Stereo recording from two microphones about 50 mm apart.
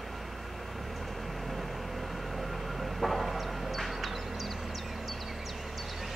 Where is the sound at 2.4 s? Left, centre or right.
Centre.